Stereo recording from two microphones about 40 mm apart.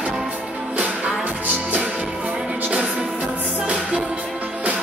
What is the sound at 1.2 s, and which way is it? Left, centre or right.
Music, right.